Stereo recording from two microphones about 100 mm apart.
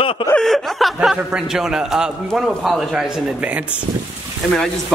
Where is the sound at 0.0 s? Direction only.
65° left (ahead or behind).